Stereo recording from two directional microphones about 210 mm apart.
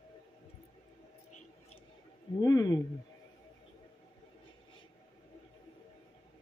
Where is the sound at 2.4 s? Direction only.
20° left (ahead or behind).